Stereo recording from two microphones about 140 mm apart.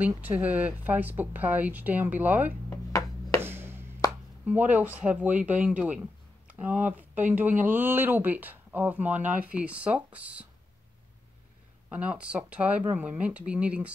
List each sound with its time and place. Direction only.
0.0 s speech: 15° right (ahead or behind)
2.7 s chopping: 25° left (ahead or behind)
3.4 s a sound: 15° right (ahead or behind)
4.5 s speech: 10° right (ahead or behind)
11.9 s speech: 10° right (ahead or behind)